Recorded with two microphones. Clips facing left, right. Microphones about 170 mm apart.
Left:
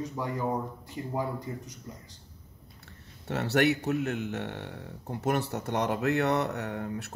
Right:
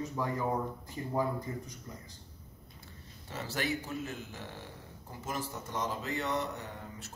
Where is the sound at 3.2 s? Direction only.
70° left (ahead or behind).